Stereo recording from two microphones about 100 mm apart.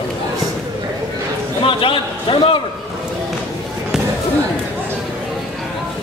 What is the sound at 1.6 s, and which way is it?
A man's voice, 60° left (ahead or behind).